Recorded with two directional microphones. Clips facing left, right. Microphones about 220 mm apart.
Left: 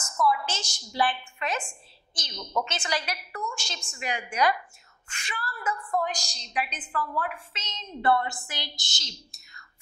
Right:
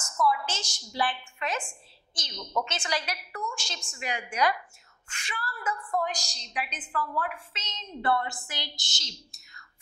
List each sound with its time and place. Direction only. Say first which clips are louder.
0.0 s a sound: left 1 dB; 25° left (ahead or behind)
0.5 s a woman's voice: left 1 dB; 10° left (ahead or behind)
3.5 s a woman's voice: left 1 dB; 10° left (ahead or behind)
5.7 s a woman's voice: left 1 dB; 25° left (ahead or behind)
6.1 s a woman's voice: left 3 dB; 10° left (ahead or behind)